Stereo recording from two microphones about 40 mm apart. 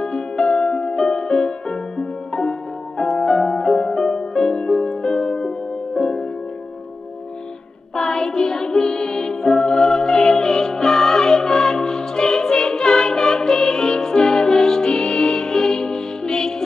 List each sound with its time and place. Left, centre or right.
0.0 s music: centre
7.9 s music: centre